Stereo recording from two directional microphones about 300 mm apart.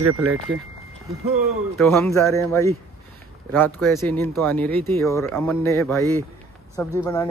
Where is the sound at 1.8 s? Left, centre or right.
Centre.